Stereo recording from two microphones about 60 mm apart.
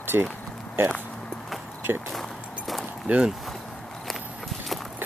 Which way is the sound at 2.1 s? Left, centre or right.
Centre.